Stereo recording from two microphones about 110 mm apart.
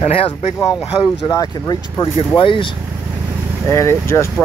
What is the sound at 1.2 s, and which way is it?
Speech, 35° left (ahead or behind).